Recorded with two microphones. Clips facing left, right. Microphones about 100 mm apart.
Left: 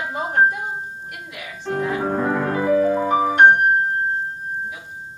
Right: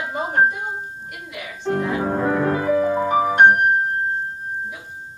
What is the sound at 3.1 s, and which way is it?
Music, 15° right (ahead or behind).